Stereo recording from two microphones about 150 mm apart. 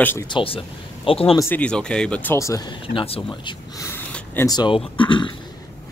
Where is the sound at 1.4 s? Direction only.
10° left (ahead or behind); by 5.4 s 35° left (ahead or behind).